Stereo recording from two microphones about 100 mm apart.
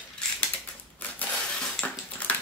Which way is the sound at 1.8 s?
15° left (ahead or behind).